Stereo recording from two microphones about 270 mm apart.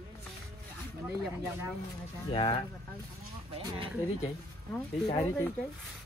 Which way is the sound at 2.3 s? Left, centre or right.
Centre.